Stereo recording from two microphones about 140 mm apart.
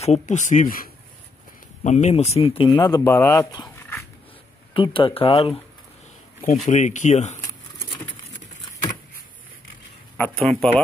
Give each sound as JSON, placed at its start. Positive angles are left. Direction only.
{"t": 0.0, "sound": "speech", "side_deg": 55}
{"t": 1.8, "sound": "speech", "side_deg": 55}
{"t": 4.7, "sound": "speech", "side_deg": 35}
{"t": 6.7, "sound": "speech", "side_deg": 60}
{"t": 10.1, "sound": "speech", "side_deg": 10}